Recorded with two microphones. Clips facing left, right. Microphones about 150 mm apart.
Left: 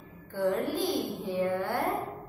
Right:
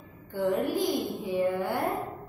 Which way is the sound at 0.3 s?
15° right (ahead or behind).